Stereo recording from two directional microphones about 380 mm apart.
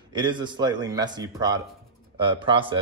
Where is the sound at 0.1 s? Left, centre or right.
Centre.